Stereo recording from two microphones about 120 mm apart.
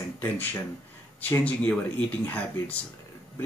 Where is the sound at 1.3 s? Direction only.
10° left (ahead or behind).